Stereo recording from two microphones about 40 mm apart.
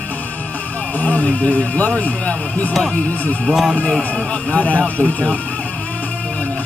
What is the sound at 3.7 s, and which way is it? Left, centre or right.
A man's voice, left.